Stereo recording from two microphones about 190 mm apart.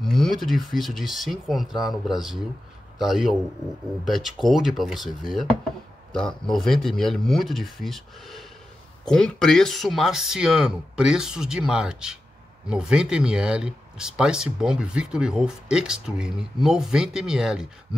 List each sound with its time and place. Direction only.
0.0 s speech: centre (ahead or behind)